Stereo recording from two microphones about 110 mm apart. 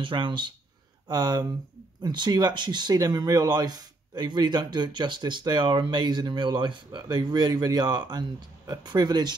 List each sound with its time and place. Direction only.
0.0 s speech: 50° right (ahead or behind)